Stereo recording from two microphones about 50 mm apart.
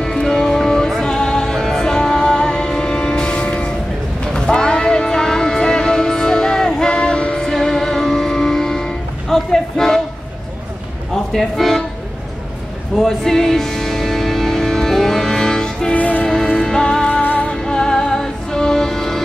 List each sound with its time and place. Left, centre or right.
0.0 s music: centre
11.3 s speech: centre
12.9 s music: centre
15.9 s music: left
16.6 s music: centre
17.1 s music: left
17.5 s music: centre